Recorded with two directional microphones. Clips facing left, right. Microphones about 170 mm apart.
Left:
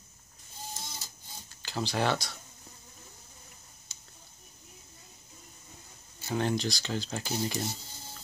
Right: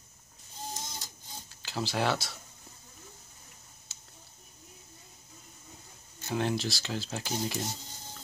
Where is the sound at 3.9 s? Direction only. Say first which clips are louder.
Even; centre (ahead or behind).